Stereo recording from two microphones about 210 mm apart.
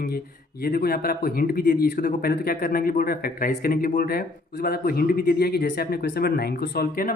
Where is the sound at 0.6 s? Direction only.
45° left (ahead or behind).